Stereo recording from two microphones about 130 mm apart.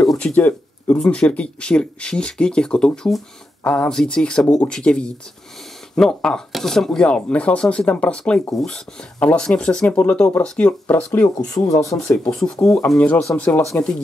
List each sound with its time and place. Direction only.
0.0 s speech: 5° left (ahead or behind)
11.3 s speech: 30° left (ahead or behind)
12.3 s speech: 5° left (ahead or behind)